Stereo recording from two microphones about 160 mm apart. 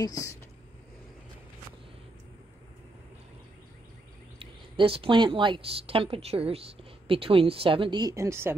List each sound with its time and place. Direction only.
0.0 s speech: 20° left (ahead or behind)
4.4 s speech: 35° right (ahead or behind); by 8.5 s 15° right (ahead or behind)